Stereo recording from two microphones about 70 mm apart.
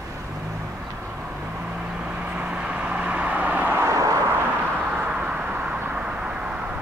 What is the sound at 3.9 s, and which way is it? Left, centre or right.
Vehicle, right.